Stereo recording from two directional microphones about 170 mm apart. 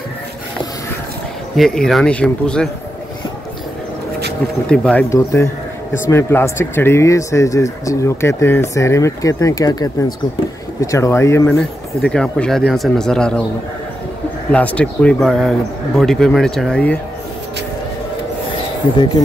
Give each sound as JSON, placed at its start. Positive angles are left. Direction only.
{"t": 1.6, "sound": "speech", "side_deg": 0}
{"t": 4.6, "sound": "speech", "side_deg": 5}
{"t": 5.1, "sound": "speech", "side_deg": 15}
{"t": 14.5, "sound": "speech", "side_deg": 10}